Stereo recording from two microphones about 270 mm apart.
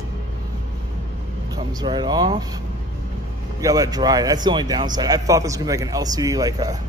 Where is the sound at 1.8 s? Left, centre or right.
Centre.